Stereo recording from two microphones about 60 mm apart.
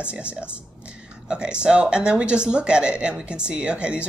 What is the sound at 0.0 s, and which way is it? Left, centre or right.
A woman's voice, centre.